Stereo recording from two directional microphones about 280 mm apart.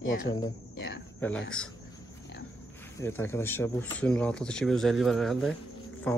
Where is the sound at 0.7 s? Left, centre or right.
Left.